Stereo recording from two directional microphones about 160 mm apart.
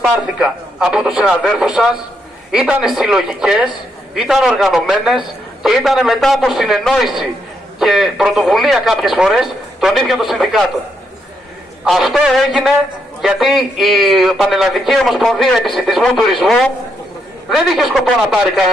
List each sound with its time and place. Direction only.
0.0 s a man's voice: 5° right (ahead or behind)
11.8 s a man's voice: centre (ahead or behind)